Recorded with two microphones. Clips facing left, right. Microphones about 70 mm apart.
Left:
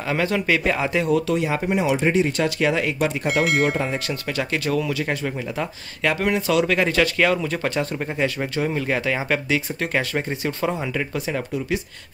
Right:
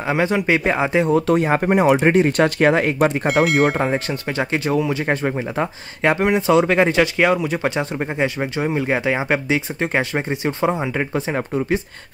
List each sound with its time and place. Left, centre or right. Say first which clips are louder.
0.0 s speech: right 3 dB; right
1.2 s speech: right 5 dB; right
3.8 s speech: right 5 dB; right